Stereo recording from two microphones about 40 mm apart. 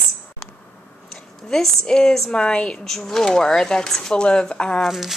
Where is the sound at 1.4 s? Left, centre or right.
Centre.